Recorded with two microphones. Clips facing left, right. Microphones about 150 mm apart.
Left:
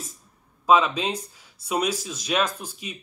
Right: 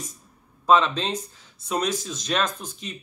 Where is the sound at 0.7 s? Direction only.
10° left (ahead or behind).